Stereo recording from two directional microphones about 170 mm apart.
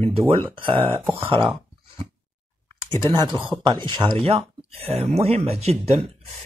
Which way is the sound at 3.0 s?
30° right (ahead or behind).